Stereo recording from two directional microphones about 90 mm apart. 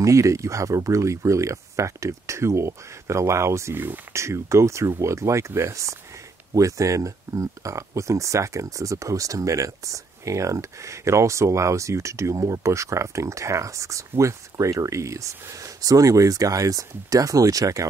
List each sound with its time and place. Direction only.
0.0 s speech: 35° right (ahead or behind)